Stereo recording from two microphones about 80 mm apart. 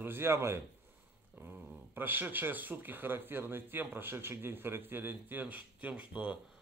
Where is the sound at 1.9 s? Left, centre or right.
Right.